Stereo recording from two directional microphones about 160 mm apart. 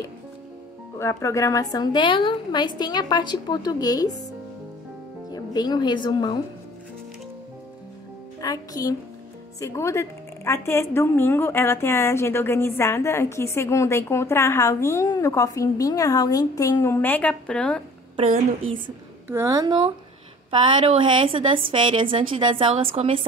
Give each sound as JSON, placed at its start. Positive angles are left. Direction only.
{"t": 0.9, "sound": "a woman's voice", "side_deg": 20}
{"t": 5.3, "sound": "a woman's voice", "side_deg": 25}
{"t": 8.4, "sound": "a woman's voice", "side_deg": 20}
{"t": 18.1, "sound": "a woman's voice", "side_deg": -40}
{"t": 19.2, "sound": "a woman's voice", "side_deg": -15}